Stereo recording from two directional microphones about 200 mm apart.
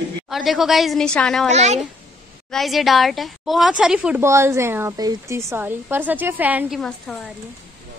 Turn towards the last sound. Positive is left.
turn(degrees=0)  # may be behind; listen again after turning